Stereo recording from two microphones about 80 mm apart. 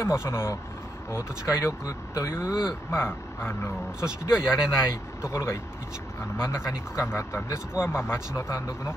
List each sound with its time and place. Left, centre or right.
0.0 s speech: left
4.0 s speech: centre
5.2 s speech: left